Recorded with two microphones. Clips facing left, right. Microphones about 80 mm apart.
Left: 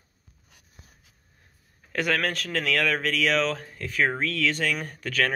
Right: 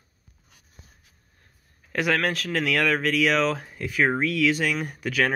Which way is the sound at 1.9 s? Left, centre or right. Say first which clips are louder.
Right 2 dB; centre.